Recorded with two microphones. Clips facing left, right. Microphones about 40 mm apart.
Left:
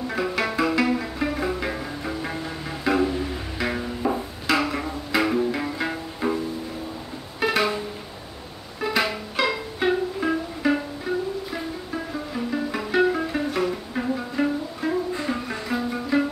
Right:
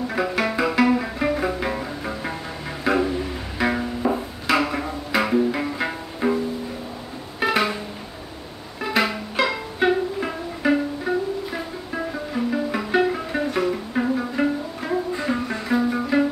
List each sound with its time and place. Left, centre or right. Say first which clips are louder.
0.1 s music: right 1 dB; centre
8.8 s music: right 2 dB; centre
11.1 s music: right 2 dB; centre
12.1 s music: right 4 dB; centre